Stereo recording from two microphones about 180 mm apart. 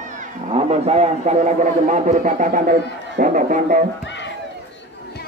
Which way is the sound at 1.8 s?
40° right (ahead or behind).